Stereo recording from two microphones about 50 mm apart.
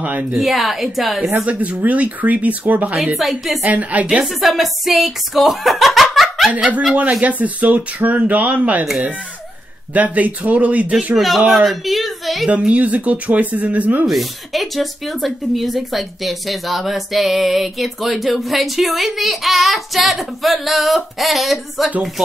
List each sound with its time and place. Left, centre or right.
0.0 s speech: right
0.3 s speech: centre
1.4 s speech: right
3.2 s speech: centre
3.6 s speech: right
4.4 s speech: centre
7.0 s speech: right
9.9 s speech: right
11.1 s a woman's voice: centre
12.4 s speech: right
14.0 s speech: centre